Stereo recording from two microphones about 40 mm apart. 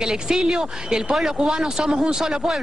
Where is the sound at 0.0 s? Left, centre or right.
Centre.